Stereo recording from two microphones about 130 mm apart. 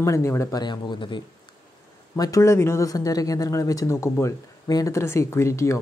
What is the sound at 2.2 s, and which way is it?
Speech, 25° left (ahead or behind).